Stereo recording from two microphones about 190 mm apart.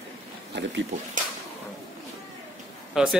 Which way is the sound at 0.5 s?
70° right (ahead or behind).